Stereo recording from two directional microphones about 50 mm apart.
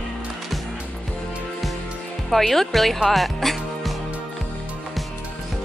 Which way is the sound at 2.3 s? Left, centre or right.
Centre.